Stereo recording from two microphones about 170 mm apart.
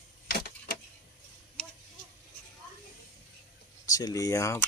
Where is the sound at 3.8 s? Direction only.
20° left (ahead or behind).